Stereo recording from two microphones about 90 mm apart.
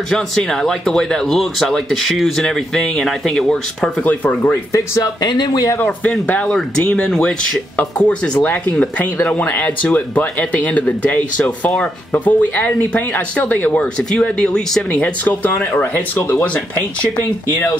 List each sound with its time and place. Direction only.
0.1 s speech: 5° left (ahead or behind)
4.4 s speech: 35° left (ahead or behind); by 5.7 s 50° left (ahead or behind)
5.9 s speech: 15° left (ahead or behind)